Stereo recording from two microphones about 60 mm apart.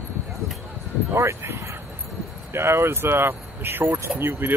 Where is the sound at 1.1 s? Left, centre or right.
Right.